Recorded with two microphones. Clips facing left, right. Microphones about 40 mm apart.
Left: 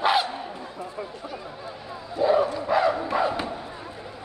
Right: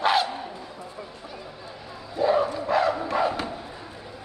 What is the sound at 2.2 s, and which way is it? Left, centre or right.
Bow-wow, centre.